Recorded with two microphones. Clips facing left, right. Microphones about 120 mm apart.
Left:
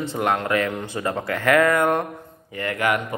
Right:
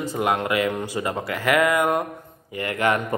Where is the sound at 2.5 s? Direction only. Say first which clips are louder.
Right 1 dB; 20° right (ahead or behind).